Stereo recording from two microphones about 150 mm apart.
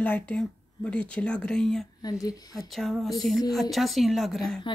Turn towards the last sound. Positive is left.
turn(degrees=0)  # may be behind; listen again after turning